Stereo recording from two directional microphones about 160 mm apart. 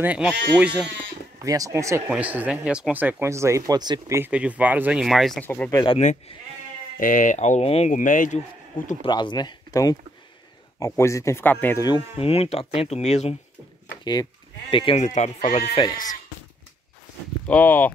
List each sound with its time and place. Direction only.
0.0 s speech: 10° right (ahead or behind)
1.4 s speech: 20° right (ahead or behind)
4.2 s speech: 10° right (ahead or behind)
5.4 s speech: 10° left (ahead or behind)
5.9 s speech: 40° left (ahead or behind)
7.0 s speech: 55° left (ahead or behind); by 7.9 s 40° left (ahead or behind)
7.9 s speech: 55° left (ahead or behind)
9.0 s speech: 30° left (ahead or behind); by 11.8 s 10° left (ahead or behind)
12.2 s speech: 40° left (ahead or behind)
14.7 s speech: 35° left (ahead or behind)
15.0 s speech: 45° left (ahead or behind)
17.5 s speech: 10° left (ahead or behind)